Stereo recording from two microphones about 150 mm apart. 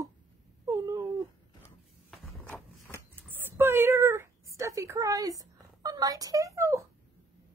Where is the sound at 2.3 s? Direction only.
15° left (ahead or behind).